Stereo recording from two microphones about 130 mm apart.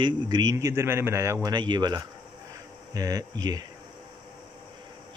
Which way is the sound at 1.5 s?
35° right (ahead or behind).